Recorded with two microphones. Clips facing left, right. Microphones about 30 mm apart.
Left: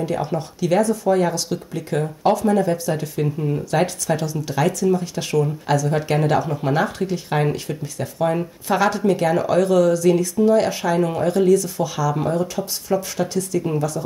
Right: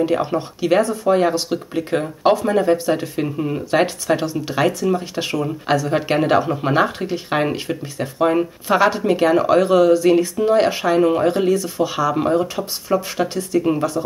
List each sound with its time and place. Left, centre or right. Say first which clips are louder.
0.0 s speech: right 4 dB; right